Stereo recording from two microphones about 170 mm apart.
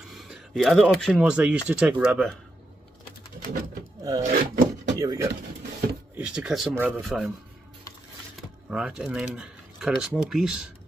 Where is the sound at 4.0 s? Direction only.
20° right (ahead or behind).